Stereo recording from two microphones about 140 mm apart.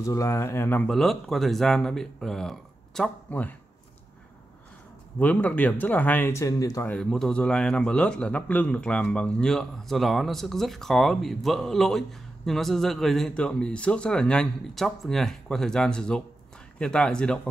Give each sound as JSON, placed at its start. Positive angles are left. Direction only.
{"t": 0.0, "sound": "speech", "side_deg": 25}
{"t": 0.8, "sound": "a man's voice", "side_deg": 0}
{"t": 5.2, "sound": "speech", "side_deg": 10}
{"t": 6.9, "sound": "a man's voice", "side_deg": 5}